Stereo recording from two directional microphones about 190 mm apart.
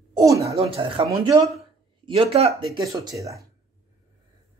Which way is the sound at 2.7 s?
15° right (ahead or behind).